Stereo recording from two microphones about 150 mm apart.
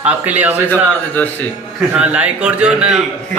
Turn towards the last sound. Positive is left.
turn(degrees=-5)  # may be behind; listen again after turning